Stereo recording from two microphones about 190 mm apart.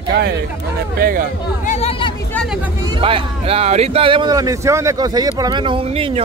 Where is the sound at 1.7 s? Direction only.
30° left (ahead or behind).